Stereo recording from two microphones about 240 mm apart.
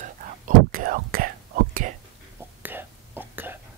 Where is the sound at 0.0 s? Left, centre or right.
Right.